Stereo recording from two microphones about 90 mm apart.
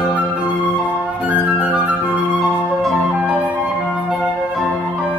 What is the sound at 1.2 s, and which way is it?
Flute, 15° right (ahead or behind).